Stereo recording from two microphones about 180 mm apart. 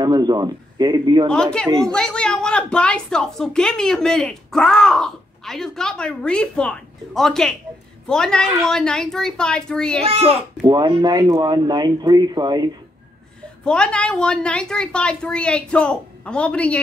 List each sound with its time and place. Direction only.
0.0 s speech: 25° right (ahead or behind)
1.3 s a woman's voice: 5° left (ahead or behind)
10.0 s a child's voice: 35° right (ahead or behind)
13.7 s a woman's voice: 5° left (ahead or behind)